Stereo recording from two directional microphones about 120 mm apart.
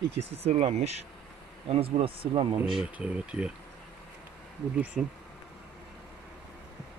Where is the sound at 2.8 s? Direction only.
10° right (ahead or behind).